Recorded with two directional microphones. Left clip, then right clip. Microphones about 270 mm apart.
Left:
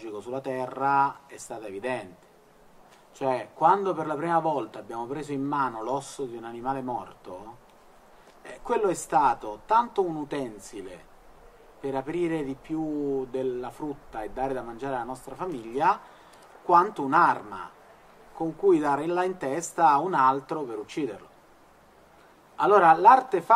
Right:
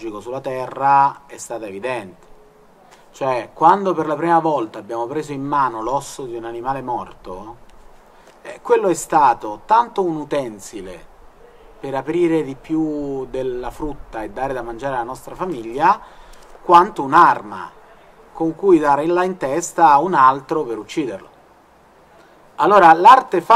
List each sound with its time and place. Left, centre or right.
0.0 s a man's voice: right
3.2 s a man's voice: right
8.4 s a man's voice: right
22.6 s a man's voice: right